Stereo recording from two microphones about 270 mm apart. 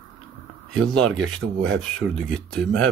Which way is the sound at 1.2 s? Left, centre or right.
Right.